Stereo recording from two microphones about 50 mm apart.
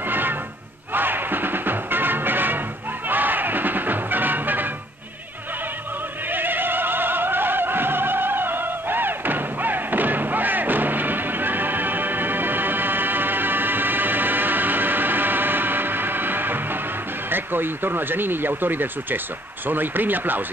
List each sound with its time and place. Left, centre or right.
0.1 s music: right
6.3 s opera: right
17.3 s speech: right